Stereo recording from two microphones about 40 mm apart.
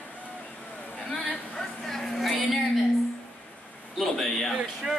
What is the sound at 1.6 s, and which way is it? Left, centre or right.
A woman's voice, centre.